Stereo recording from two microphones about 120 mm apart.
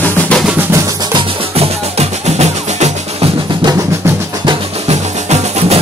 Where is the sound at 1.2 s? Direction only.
60° right (ahead or behind).